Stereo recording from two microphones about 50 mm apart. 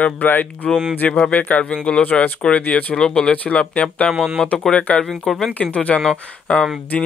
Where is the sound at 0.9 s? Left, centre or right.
Left.